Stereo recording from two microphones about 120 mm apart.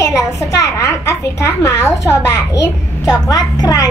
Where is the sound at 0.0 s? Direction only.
25° left (ahead or behind).